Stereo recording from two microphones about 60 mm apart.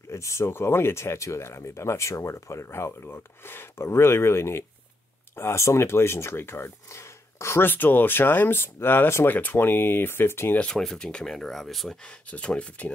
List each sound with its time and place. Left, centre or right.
0.1 s speech: left
7.7 s speech: left
10.6 s speech: centre
12.3 s speech: left